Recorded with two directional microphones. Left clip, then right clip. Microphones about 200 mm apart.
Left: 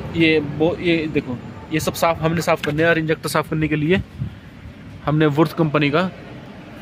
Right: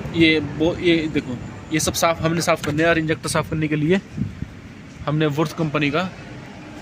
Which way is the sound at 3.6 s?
5° left (ahead or behind).